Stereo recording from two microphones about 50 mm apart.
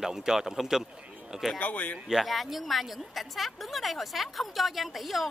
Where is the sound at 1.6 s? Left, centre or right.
Left.